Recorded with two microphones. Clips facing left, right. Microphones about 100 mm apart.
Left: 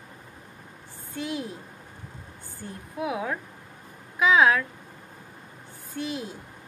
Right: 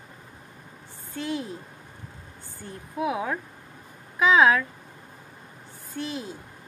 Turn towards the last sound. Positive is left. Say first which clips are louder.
# left 1 dB
turn(degrees=10)  # may be behind; listen again after turning